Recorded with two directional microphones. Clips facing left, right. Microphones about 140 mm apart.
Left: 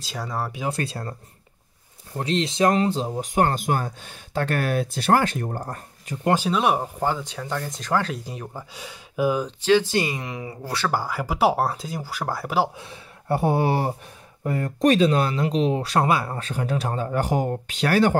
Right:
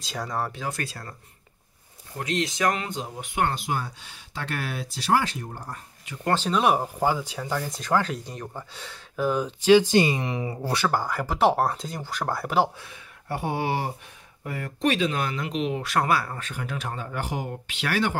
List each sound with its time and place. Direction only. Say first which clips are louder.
0.0 s speech: even; 5° left (ahead or behind)
0.7 s speech: left 5 dB; 30° left (ahead or behind)
2.1 s speech: left 4 dB; 30° left (ahead or behind); by 6.1 s 45° left (ahead or behind)
6.2 s speech: left 2 dB; 10° left (ahead or behind)
9.6 s speech: right 4 dB; 15° right (ahead or behind)
10.9 s speech: left 1 dB; 5° left (ahead or behind)
12.7 s speech: left 5 dB; 30° left (ahead or behind)